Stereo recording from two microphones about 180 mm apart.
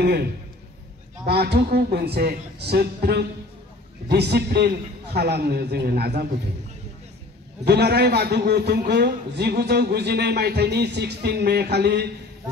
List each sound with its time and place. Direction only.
0.0 s a man's voice: 60° right (ahead or behind)
7.6 s a man's voice: 65° right (ahead or behind)